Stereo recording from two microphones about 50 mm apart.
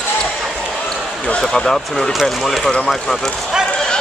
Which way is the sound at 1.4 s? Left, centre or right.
Centre.